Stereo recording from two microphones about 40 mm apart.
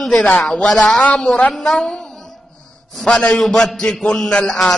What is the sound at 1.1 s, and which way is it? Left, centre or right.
Speech, left.